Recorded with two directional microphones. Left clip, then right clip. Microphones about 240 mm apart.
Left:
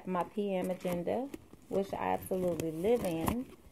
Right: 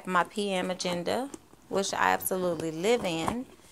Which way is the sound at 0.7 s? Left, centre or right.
Right.